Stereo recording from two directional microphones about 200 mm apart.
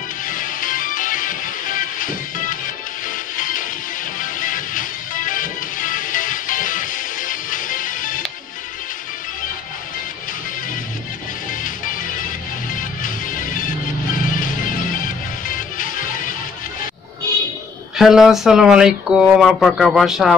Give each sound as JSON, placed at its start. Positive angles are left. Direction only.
{"t": 0.3, "sound": "music", "side_deg": 40}
{"t": 12.7, "sound": "music", "side_deg": 40}
{"t": 17.9, "sound": "speech", "side_deg": 0}